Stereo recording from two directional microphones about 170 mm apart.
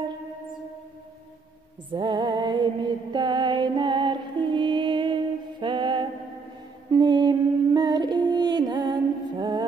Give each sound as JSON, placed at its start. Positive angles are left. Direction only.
{"t": 1.9, "sound": "music", "side_deg": -30}